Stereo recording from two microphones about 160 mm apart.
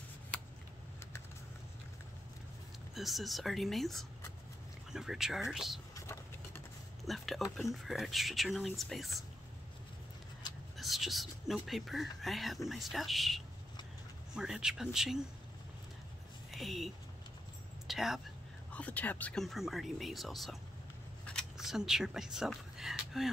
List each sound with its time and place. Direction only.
2.9 s speech: centre (ahead or behind)
5.9 s vehicle: 15° left (ahead or behind)
7.1 s speech: centre (ahead or behind)
10.8 s speech: centre (ahead or behind)
16.4 s a woman's voice: centre (ahead or behind)
18.7 s speech: 10° left (ahead or behind)